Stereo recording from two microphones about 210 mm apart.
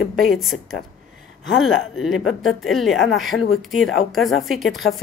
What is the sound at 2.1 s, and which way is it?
Speech, 70° left (ahead or behind).